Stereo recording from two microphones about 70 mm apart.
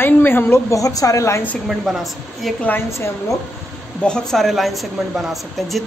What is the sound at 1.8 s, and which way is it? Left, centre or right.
Speech, centre.